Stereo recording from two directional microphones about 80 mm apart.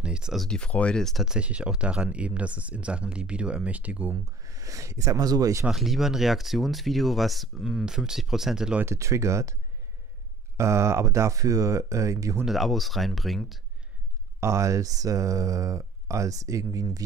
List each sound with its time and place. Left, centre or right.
0.0 s a sound: centre
0.4 s speech: centre
1.2 s speech: centre
4.1 s speech: right
5.7 s speech: centre
8.8 s speech: right
10.6 s speech: right
12.4 s speech: centre
14.4 s speech: right